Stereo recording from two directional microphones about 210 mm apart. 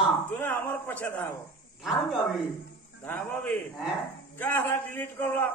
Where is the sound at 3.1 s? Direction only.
10° left (ahead or behind).